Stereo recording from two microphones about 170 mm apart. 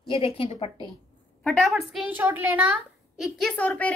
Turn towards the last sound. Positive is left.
turn(degrees=10)  # may be behind; listen again after turning